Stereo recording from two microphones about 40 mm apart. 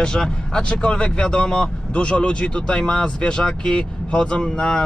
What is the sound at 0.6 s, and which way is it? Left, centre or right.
Speech, left.